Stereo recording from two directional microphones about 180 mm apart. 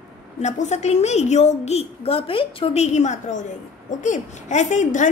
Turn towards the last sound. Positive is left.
turn(degrees=40)  # may be behind; listen again after turning